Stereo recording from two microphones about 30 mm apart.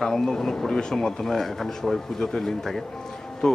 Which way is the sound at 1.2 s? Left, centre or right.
Centre.